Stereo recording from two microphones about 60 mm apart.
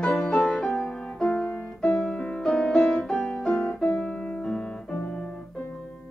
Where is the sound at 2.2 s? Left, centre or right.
Centre.